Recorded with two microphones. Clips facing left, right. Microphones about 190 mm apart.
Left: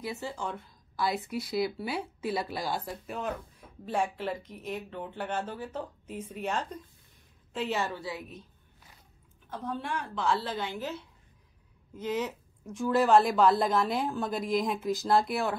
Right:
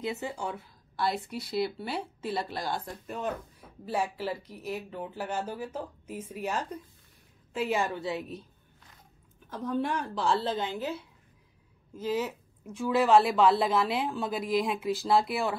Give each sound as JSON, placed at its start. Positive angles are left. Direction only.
{"t": 0.0, "sound": "a woman's voice", "side_deg": -20}
{"t": 9.5, "sound": "a woman's voice", "side_deg": -45}
{"t": 12.0, "sound": "a woman's voice", "side_deg": -5}